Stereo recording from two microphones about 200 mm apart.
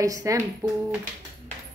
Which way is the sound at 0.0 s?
15° right (ahead or behind).